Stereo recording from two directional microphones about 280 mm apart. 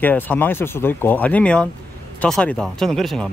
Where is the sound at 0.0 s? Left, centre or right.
Centre.